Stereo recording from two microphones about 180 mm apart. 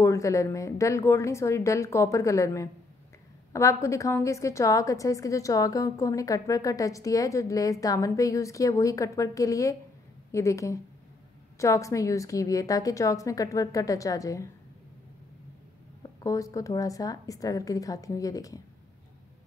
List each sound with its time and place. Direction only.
0.0 s a woman's voice: 15° left (ahead or behind)
16.0 s a woman's voice: 20° left (ahead or behind)